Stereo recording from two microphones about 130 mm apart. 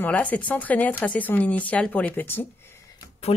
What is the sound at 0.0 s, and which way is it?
A woman's voice, 10° left (ahead or behind).